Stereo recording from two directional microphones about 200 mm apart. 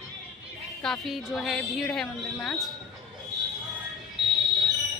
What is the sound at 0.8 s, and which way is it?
A woman's voice, centre (ahead or behind).